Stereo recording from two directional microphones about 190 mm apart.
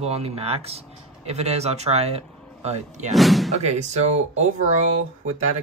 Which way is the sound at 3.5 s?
35° right (ahead or behind).